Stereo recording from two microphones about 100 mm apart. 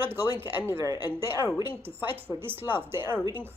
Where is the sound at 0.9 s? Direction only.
45° left (ahead or behind).